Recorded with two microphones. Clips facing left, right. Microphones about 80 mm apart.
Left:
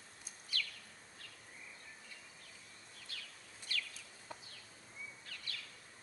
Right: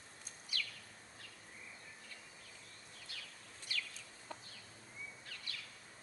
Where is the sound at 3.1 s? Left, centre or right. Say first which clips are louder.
Left 1 dB; centre.